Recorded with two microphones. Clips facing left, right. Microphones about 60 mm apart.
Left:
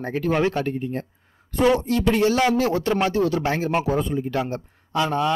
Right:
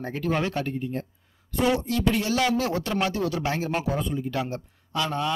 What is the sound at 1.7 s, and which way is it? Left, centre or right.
A man's voice, left.